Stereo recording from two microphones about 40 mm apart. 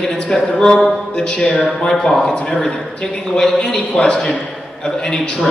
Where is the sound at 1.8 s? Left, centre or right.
Centre.